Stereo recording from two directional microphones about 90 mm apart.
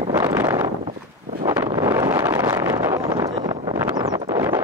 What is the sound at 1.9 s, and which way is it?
Wind noise, 25° right (ahead or behind).